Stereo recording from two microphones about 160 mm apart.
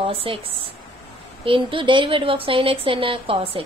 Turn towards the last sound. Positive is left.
turn(degrees=-35)  # may be behind; listen again after turning